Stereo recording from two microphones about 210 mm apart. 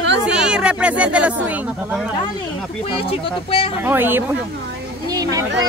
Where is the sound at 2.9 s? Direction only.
25° left (ahead or behind).